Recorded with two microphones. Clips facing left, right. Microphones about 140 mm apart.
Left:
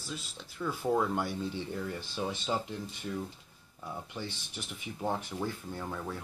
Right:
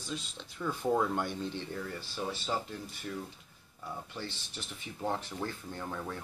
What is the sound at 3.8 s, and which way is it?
Speech, 15° left (ahead or behind).